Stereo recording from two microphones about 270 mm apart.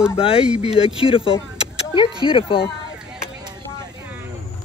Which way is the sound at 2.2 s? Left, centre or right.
Centre.